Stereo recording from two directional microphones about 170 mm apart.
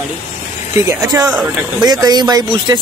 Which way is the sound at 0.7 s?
20° right (ahead or behind).